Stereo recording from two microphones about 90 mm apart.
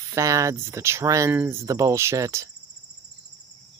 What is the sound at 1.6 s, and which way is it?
Speech, 35° right (ahead or behind).